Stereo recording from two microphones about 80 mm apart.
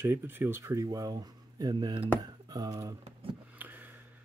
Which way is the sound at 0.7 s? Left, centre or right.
Right.